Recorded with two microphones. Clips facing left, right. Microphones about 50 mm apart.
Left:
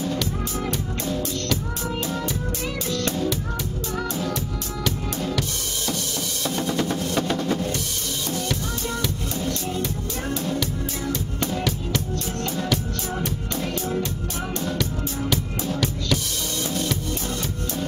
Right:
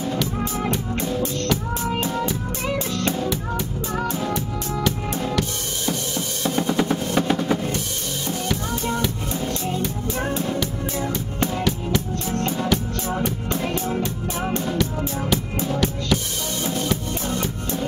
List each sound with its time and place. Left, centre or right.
1.9 s music: centre
2.9 s music: right
6.4 s drum: right
9.5 s music: right
12.5 s music: centre
13.8 s music: right
14.8 s music: centre